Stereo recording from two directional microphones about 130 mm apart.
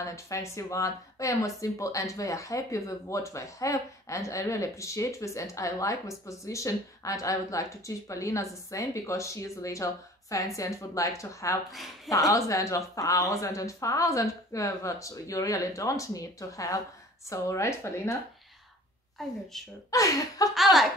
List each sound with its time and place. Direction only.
0.0 s speech: 25° left (ahead or behind)
19.2 s speech: centre (ahead or behind)
19.9 s speech: 25° left (ahead or behind)
20.5 s speech: centre (ahead or behind)